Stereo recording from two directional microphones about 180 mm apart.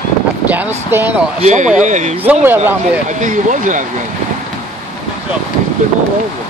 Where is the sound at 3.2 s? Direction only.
45° right (ahead or behind).